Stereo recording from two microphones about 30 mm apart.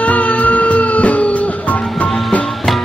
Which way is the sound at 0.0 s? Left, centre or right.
Left.